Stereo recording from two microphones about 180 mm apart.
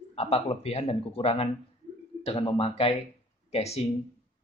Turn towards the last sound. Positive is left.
turn(degrees=35)  # may be behind; listen again after turning